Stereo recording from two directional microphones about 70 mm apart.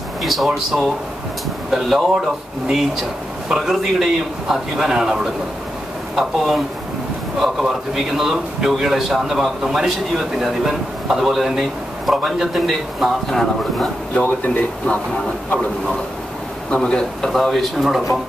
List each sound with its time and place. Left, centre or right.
0.2 s a man's voice: centre
14.2 s speech: left
16.7 s a man's voice: centre